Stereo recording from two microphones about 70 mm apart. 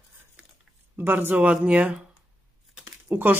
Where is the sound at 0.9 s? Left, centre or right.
Right.